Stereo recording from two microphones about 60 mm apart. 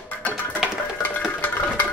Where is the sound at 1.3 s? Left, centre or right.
Left.